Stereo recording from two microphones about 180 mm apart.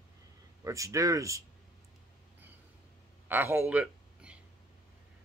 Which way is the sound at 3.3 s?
15° right (ahead or behind).